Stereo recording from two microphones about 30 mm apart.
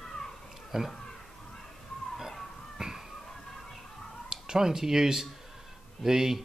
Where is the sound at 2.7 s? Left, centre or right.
Centre.